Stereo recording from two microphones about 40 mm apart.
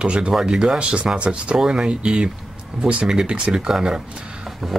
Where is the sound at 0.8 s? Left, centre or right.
Right.